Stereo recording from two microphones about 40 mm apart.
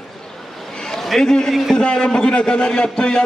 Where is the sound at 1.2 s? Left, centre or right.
Centre.